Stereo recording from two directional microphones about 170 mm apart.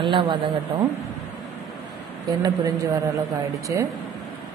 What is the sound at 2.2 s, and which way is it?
Speech, 25° right (ahead or behind).